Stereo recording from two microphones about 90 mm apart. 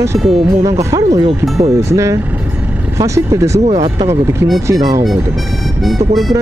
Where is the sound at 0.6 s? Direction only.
35° right (ahead or behind).